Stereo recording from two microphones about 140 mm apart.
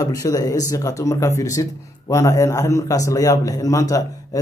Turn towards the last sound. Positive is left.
turn(degrees=25)  # may be behind; listen again after turning